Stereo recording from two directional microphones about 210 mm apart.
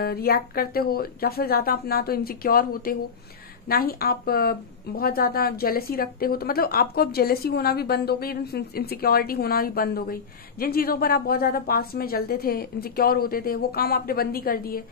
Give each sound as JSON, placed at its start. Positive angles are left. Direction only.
{"t": 0.0, "sound": "a woman's voice", "side_deg": 45}